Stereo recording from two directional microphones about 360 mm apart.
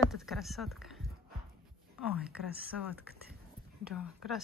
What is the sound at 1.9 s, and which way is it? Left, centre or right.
A woman's voice, centre.